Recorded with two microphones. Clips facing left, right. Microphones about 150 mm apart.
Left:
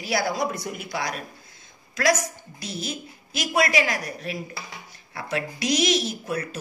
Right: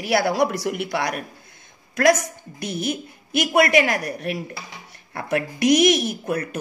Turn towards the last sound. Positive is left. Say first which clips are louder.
# right 3 dB
turn(degrees=-60)  # may be behind; listen again after turning